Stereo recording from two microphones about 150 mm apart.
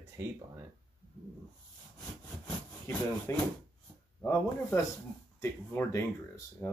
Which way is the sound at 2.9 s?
20° left (ahead or behind).